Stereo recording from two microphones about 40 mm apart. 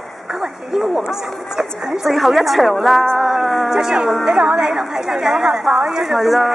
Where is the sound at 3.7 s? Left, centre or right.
Centre.